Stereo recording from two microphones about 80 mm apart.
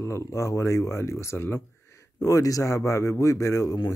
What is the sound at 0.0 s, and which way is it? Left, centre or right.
Speech, left.